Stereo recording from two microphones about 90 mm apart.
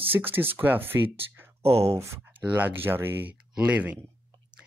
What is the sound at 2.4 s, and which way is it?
Speech, 20° right (ahead or behind).